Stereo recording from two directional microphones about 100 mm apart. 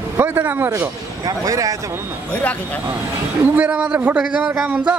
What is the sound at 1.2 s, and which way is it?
Speech, 40° right (ahead or behind).